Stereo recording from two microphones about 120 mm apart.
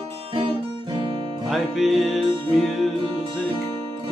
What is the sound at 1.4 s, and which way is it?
Music, centre (ahead or behind).